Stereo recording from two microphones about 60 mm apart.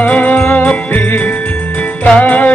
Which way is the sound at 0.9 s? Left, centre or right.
Left.